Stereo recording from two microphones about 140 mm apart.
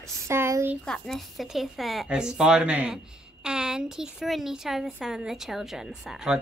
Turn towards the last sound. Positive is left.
turn(degrees=-5)  # may be behind; listen again after turning